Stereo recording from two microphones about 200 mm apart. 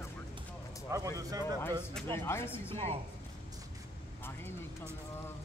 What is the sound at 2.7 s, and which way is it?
Speech, 30° right (ahead or behind).